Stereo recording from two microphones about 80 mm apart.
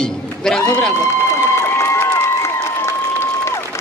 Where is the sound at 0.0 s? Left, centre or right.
Centre.